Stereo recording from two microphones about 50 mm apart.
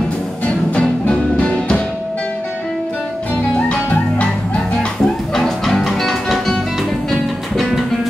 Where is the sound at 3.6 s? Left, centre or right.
Left.